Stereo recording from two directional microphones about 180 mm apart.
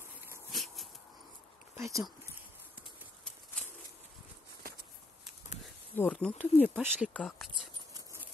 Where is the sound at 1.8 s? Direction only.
15° right (ahead or behind).